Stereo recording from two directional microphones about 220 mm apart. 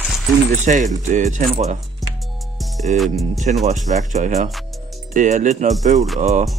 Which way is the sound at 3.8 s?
35° right (ahead or behind).